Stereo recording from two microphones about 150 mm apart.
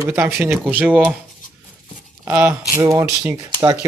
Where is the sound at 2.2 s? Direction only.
15° right (ahead or behind).